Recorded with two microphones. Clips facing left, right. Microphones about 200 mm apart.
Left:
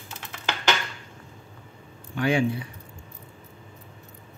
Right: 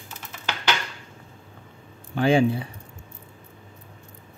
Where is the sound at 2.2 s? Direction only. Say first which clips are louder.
Right 4 dB; 30° right (ahead or behind).